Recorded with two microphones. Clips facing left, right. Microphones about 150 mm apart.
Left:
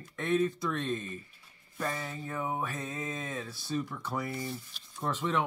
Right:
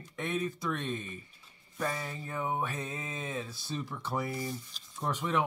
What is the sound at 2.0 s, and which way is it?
Mantra, 20° right (ahead or behind).